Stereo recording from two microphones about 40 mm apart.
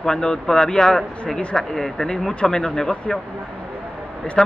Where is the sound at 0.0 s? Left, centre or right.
Centre.